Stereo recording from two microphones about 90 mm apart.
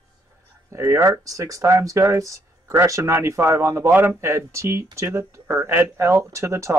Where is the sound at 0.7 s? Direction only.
30° right (ahead or behind).